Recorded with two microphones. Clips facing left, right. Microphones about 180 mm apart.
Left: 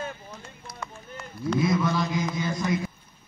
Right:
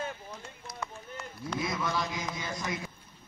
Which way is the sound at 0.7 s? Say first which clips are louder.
Left 1 dB; 10° right (ahead or behind).